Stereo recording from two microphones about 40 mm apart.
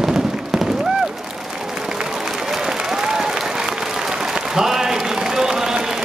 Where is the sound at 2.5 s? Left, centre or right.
Centre.